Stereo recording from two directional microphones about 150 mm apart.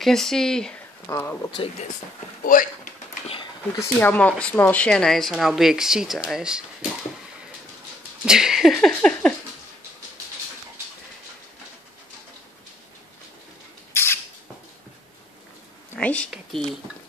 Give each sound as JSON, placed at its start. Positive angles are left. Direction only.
{"t": 0.0, "sound": "speech", "side_deg": 5}
{"t": 1.0, "sound": "speech", "side_deg": 20}
{"t": 2.4, "sound": "speech", "side_deg": 65}
{"t": 3.7, "sound": "speech", "side_deg": 15}
{"t": 8.3, "sound": "speech", "side_deg": -5}
{"t": 13.9, "sound": "squawk", "side_deg": 15}
{"t": 16.0, "sound": "speech", "side_deg": 10}